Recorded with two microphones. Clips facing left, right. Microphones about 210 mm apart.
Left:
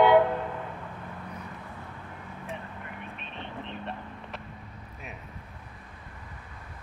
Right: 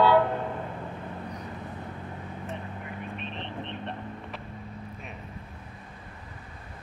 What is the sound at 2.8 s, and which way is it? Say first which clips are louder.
Vehicle: right 5 dB; centre (ahead or behind).